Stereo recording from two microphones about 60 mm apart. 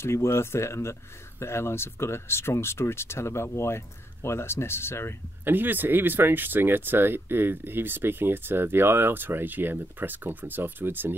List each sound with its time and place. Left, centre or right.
0.0 s speech: left
5.4 s speech: right